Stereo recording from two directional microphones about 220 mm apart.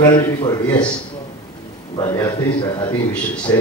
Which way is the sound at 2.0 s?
15° left (ahead or behind).